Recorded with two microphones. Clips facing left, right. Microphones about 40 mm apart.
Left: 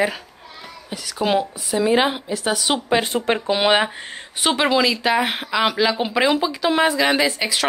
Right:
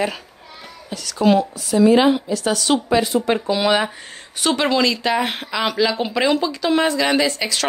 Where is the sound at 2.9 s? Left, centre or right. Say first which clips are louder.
Even; left.